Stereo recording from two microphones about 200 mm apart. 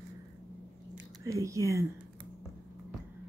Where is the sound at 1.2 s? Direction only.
15° right (ahead or behind).